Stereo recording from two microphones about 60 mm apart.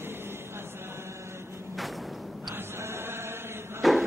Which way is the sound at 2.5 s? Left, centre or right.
Right.